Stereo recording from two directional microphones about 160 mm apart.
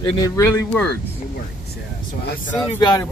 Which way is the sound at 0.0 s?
20° left (ahead or behind).